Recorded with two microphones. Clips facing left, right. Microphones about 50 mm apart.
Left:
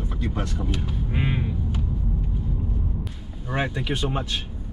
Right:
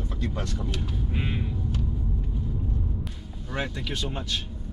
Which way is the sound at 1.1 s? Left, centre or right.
Centre.